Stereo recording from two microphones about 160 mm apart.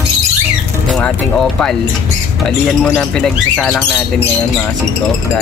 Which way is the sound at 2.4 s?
5° left (ahead or behind).